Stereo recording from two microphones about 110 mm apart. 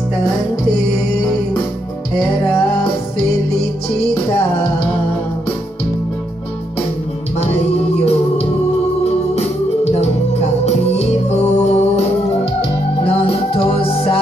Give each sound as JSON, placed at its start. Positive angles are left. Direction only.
{"t": 9.3, "sound": "music", "side_deg": 75}